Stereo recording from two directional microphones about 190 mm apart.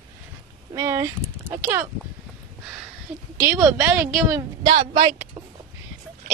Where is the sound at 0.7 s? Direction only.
15° right (ahead or behind).